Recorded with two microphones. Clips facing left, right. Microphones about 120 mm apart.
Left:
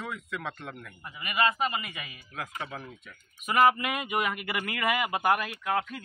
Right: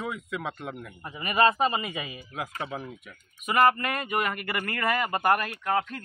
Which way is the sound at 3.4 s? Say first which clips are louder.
Right 1 dB; 5° left (ahead or behind).